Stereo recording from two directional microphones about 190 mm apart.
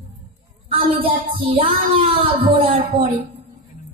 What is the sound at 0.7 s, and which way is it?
Speech, 30° right (ahead or behind).